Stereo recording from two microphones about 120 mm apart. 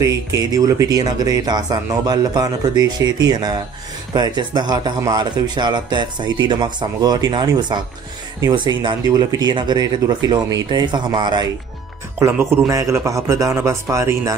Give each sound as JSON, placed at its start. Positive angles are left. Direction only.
{"t": 0.0, "sound": "speech", "side_deg": -30}
{"t": 12.2, "sound": "speech", "side_deg": -20}